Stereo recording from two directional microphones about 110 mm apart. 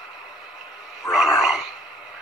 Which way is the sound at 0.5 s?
5° right (ahead or behind).